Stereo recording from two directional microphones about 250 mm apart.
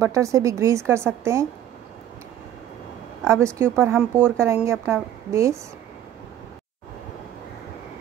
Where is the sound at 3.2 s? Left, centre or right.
Centre.